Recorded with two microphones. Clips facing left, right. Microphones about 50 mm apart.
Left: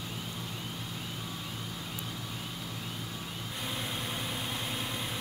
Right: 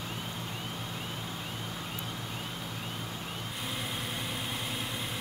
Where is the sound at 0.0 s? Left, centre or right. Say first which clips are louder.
Right 2 dB; right.